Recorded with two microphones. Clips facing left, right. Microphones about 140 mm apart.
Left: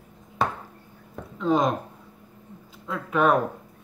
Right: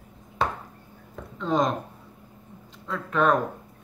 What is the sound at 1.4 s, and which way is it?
Speech, 5° left (ahead or behind).